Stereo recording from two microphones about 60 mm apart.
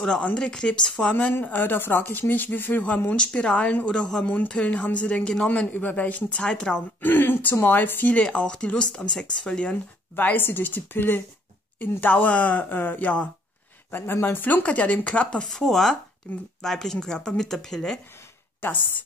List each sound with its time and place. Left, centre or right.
0.2 s speech: centre
1.3 s speech: left
3.8 s speech: centre
5.5 s speech: left
6.4 s speech: centre
7.0 s a sound: left
7.6 s speech: left
8.1 s speech: centre
10.1 s speech: left
15.4 s speech: centre
16.3 s speech: left
16.6 s speech: centre